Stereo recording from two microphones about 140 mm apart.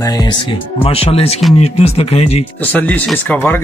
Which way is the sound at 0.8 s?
45° left (ahead or behind).